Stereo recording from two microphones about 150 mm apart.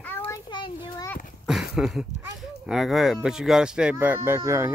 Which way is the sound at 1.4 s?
5° right (ahead or behind).